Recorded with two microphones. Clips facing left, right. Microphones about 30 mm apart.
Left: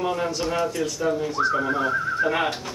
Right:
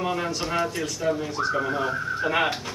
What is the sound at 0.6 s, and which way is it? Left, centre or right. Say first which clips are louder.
Speech: left 2 dB; centre.